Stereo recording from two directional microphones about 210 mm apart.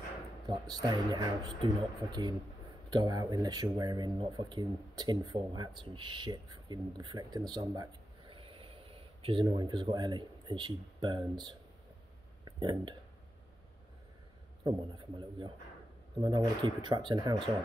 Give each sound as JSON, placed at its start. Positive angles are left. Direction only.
{"t": 0.5, "sound": "speech", "side_deg": -20}
{"t": 14.6, "sound": "speech", "side_deg": -20}